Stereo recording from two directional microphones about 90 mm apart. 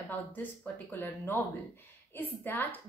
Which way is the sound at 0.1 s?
20° left (ahead or behind).